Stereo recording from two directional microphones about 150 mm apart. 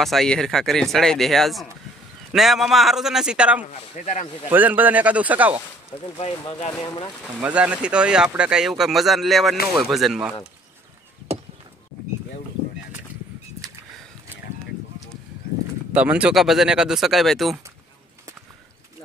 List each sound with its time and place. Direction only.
0.0 s speech: centre (ahead or behind)
3.6 s speech: 45° left (ahead or behind)
4.5 s speech: 10° right (ahead or behind)
7.3 s speech: 10° right (ahead or behind)
11.3 s a sound: 45° right (ahead or behind)
15.9 s speech: 10° right (ahead or behind)